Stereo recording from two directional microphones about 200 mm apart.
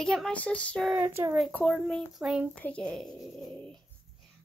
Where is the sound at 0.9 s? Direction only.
10° right (ahead or behind).